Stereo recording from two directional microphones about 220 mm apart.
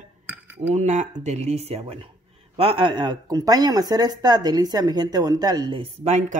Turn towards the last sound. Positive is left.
turn(degrees=-30)  # may be behind; listen again after turning